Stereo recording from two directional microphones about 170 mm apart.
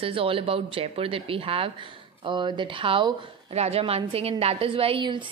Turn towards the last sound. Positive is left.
turn(degrees=-30)  # may be behind; listen again after turning